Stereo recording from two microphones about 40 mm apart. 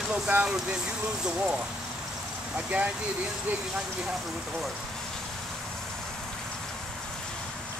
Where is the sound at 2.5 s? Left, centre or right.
Right.